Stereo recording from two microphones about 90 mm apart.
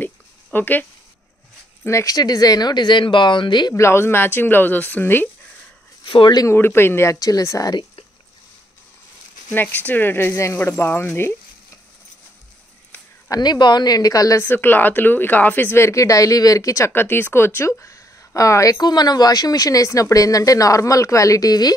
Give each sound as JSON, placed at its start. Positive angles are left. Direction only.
{"t": 0.0, "sound": "a sound", "side_deg": 20}
{"t": 1.9, "sound": "a woman's voice", "side_deg": 30}
{"t": 2.1, "sound": "speech", "side_deg": 45}
{"t": 3.7, "sound": "speech", "side_deg": 30}
{"t": 6.0, "sound": "speech", "side_deg": 65}
{"t": 6.5, "sound": "speech", "side_deg": 25}
{"t": 7.2, "sound": "a woman's voice", "side_deg": 40}
{"t": 9.5, "sound": "speech", "side_deg": 20}
{"t": 13.3, "sound": "a woman's voice", "side_deg": 50}
{"t": 14.4, "sound": "a woman's voice", "side_deg": 25}